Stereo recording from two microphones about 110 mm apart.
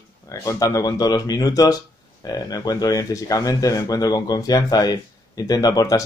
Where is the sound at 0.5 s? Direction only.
30° left (ahead or behind).